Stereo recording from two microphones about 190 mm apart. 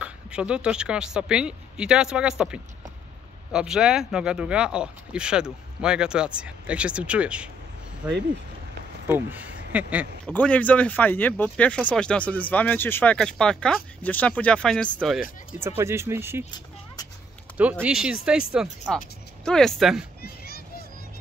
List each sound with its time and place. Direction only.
0.0 s speech: 5° right (ahead or behind)
9.0 s speech: 10° right (ahead or behind)
10.2 s speech: 5° left (ahead or behind)
15.6 s speech: 15° right (ahead or behind)
17.6 s speech: 5° right (ahead or behind)
20.2 s a sound: 55° left (ahead or behind)